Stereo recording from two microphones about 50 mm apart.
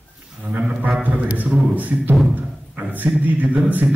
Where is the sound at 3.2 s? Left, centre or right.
Right.